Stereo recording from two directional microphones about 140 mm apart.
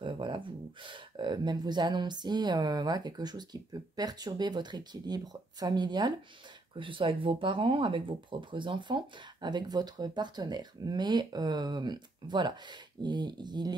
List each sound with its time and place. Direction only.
0.0 s speech: 35° right (ahead or behind)